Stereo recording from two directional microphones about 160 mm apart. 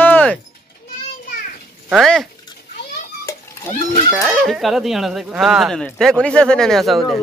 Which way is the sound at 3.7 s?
45° left (ahead or behind).